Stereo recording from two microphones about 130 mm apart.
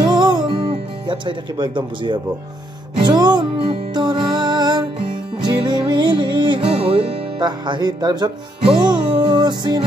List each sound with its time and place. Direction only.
0.0 s music: 35° right (ahead or behind)